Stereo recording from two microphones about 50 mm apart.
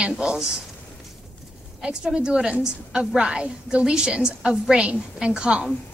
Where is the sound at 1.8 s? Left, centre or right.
Centre.